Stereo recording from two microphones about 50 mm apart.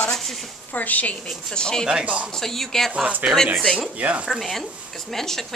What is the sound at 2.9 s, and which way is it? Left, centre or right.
Speech, right.